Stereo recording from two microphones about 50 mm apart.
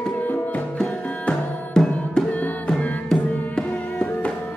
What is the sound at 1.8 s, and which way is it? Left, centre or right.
Music, centre.